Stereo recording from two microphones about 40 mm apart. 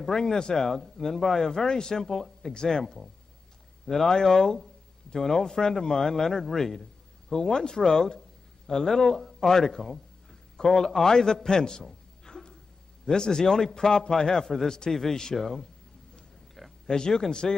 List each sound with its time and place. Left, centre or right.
0.0 s a man's voice: centre
2.8 s a man's voice: centre
12.3 s a sound: centre
13.0 s a man's voice: centre
16.5 s a sound: centre
16.9 s a man's voice: centre